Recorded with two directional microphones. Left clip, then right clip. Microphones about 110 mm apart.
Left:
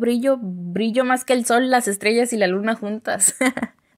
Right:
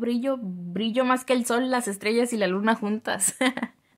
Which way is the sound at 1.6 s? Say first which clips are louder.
Left 8 dB; 35° left (ahead or behind).